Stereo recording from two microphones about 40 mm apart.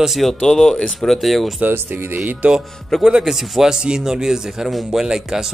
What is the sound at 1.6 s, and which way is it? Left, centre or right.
Speech, right.